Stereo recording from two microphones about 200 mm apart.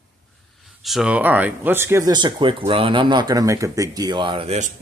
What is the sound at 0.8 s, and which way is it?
Speech, centre (ahead or behind).